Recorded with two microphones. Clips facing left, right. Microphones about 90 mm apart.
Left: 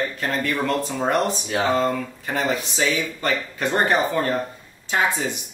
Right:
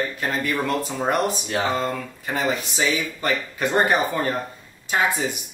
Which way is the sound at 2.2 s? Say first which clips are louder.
Even; 10° right (ahead or behind).